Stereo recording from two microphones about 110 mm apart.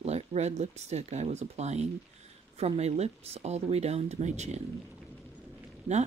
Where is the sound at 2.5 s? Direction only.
70° right (ahead or behind); by 4.6 s 90° right.